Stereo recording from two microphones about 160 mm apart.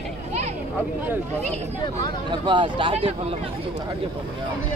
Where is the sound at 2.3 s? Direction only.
30° right (ahead or behind).